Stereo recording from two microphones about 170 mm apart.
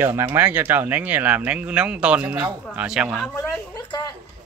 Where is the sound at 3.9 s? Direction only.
25° left (ahead or behind).